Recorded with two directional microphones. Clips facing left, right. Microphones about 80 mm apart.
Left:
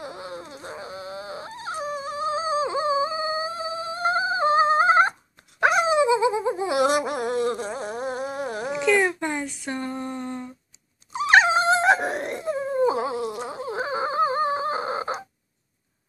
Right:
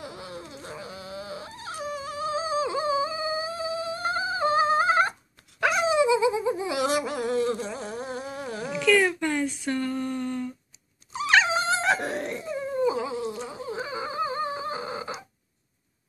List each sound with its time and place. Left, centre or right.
0.0 s dog: left
7.3 s a sound: left
8.6 s a sound: left
11.1 s dog: left
12.0 s dog: left
13.4 s insect: left